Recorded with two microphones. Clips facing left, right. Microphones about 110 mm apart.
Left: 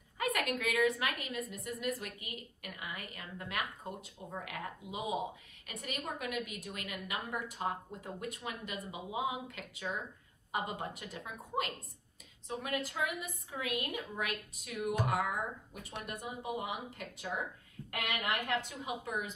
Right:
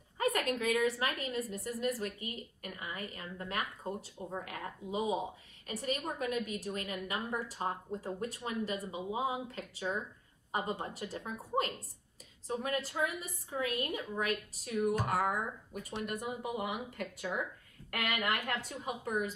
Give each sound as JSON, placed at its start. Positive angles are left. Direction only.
{"t": 0.2, "sound": "a woman's voice", "side_deg": -35}
{"t": 15.9, "sound": "speech", "side_deg": 50}
{"t": 16.2, "sound": "a woman's voice", "side_deg": -50}